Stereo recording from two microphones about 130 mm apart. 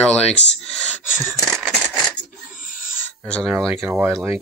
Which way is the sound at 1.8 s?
5° left (ahead or behind).